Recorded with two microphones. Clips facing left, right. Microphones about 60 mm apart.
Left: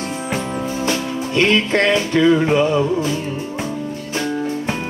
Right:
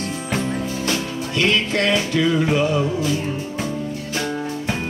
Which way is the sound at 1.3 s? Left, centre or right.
Left.